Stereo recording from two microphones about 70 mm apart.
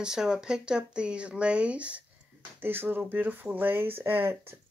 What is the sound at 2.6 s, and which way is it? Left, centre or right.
Speech, right.